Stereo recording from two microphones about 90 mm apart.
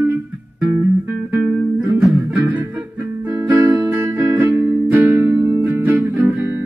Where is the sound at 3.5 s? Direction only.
20° right (ahead or behind).